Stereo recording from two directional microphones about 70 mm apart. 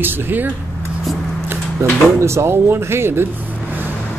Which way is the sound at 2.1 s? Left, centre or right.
Right.